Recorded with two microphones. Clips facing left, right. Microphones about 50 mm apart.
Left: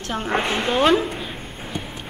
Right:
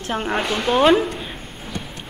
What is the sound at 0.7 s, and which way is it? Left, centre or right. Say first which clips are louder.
Speech: right 3 dB; centre.